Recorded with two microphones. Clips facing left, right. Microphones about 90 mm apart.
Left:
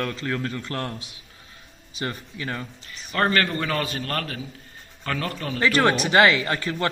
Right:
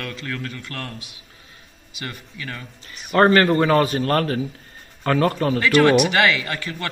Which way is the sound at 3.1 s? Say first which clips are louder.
Right 7 dB; 35° right (ahead or behind).